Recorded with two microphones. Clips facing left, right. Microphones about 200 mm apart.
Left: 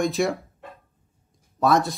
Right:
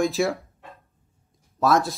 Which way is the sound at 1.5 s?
Centre (ahead or behind).